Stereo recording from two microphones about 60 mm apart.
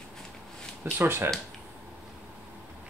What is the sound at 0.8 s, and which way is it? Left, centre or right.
Speech, right.